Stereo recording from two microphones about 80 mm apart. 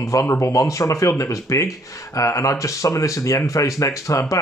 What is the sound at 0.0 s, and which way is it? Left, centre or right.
Speech, left.